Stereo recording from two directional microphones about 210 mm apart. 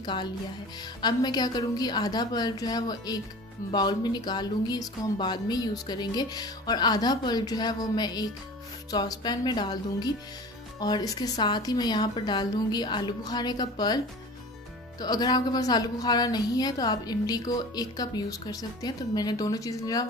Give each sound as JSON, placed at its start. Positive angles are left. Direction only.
{"t": 0.0, "sound": "speech", "side_deg": 20}